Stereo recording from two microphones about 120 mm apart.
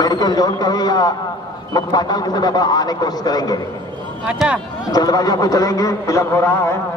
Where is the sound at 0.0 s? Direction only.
35° left (ahead or behind).